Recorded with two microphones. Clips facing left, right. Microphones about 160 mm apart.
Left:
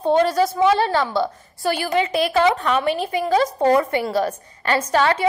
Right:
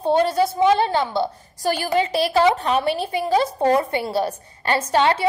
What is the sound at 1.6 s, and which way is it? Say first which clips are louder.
A woman's voice: even; 35° right (ahead or behind).